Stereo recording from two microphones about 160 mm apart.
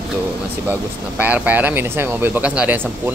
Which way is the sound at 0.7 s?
10° right (ahead or behind).